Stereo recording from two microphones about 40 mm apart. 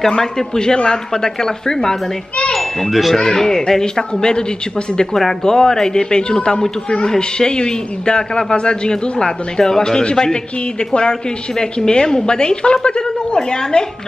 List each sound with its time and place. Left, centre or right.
0.1 s speech: centre
2.5 s a child's voice: centre
3.2 s a man's voice: centre